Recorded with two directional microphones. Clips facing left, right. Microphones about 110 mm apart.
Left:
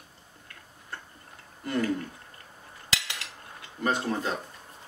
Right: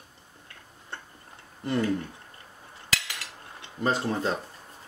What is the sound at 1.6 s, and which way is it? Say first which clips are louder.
Speech: right 2 dB; 25° right (ahead or behind).